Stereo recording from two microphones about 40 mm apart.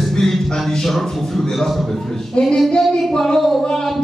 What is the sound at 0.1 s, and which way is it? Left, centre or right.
Music, centre.